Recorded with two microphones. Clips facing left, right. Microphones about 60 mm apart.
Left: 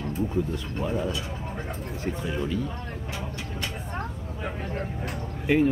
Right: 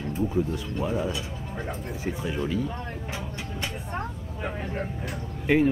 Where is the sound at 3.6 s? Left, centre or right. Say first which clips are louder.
Right 1 dB; centre.